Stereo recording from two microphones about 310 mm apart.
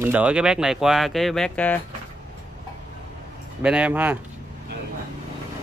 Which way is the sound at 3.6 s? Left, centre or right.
Centre.